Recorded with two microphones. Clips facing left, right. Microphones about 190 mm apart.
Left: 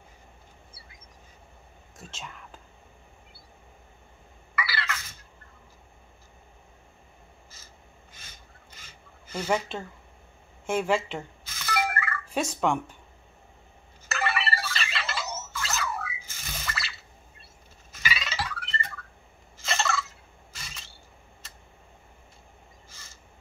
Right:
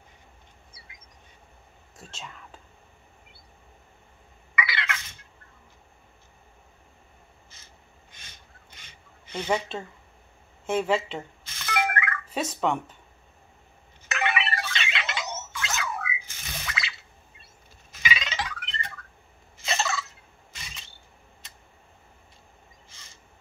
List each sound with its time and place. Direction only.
0.8 s duck: 60° left (ahead or behind)
8.7 s rub: 5° left (ahead or behind)
10.7 s speech: 5° right (ahead or behind)
11.1 s a sound: 5° left (ahead or behind)
12.4 s speech: 5° right (ahead or behind)
14.1 s ringtone: 5° left (ahead or behind)
17.9 s music: 5° left (ahead or behind)
19.5 s a sound: centre (ahead or behind)